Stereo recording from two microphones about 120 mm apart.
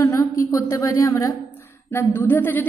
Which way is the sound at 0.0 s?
25° left (ahead or behind).